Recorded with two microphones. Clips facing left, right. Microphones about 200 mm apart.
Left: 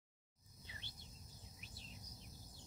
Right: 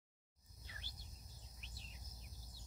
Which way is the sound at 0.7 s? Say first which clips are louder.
Left 1 dB; 20° left (ahead or behind).